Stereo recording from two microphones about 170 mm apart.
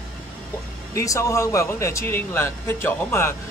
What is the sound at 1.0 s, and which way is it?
Speech, 20° left (ahead or behind).